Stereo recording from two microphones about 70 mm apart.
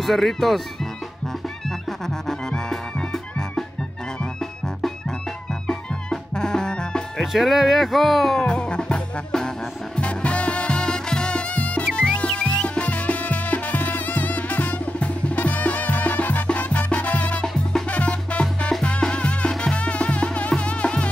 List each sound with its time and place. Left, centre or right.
0.0 s speech: centre
1.7 s music: centre
7.3 s speech: centre
8.5 s music: centre